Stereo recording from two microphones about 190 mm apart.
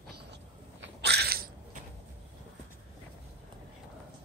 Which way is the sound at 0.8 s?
60° right (ahead or behind).